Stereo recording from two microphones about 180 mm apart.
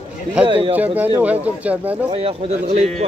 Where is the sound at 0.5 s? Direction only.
30° right (ahead or behind).